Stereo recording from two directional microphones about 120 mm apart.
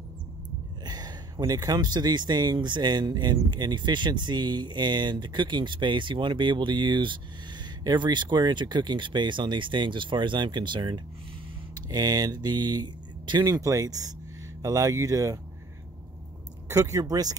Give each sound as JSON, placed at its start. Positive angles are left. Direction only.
{"t": 0.8, "sound": "speech", "side_deg": -35}
{"t": 16.6, "sound": "speech", "side_deg": -25}